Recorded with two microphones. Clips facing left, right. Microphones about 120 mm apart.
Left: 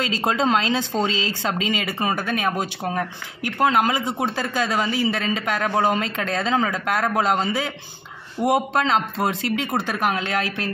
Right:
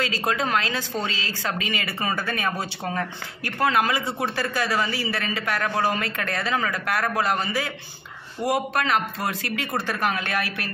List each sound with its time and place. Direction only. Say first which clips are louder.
0.0 s speech: left 3 dB; 25° left (ahead or behind)